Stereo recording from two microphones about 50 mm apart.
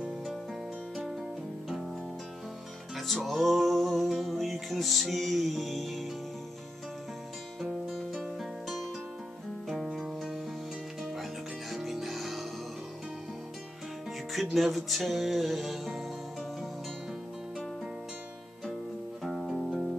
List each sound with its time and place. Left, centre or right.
3.0 s music: centre
8.1 s music: centre
11.7 s music: centre
14.3 s music: centre
19.2 s music: centre